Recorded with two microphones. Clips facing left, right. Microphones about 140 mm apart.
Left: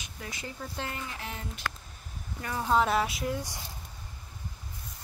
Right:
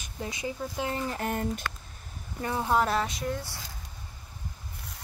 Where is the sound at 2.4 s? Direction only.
20° right (ahead or behind).